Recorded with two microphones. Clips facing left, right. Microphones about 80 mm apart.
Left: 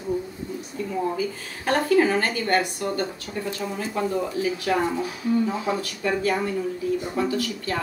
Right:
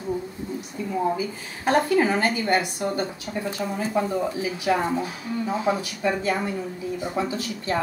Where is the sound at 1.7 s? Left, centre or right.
Centre.